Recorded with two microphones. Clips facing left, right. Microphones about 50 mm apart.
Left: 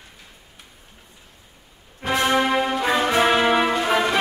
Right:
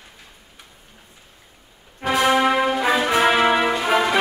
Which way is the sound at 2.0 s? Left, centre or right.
Right.